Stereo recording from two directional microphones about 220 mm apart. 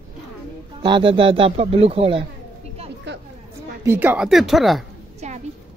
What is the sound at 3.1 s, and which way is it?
Chatter, 50° right (ahead or behind).